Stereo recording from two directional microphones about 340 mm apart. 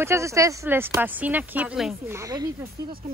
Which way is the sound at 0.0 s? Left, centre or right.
Centre.